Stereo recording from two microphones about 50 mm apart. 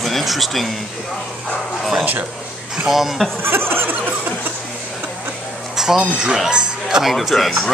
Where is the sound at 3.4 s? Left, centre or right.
Right.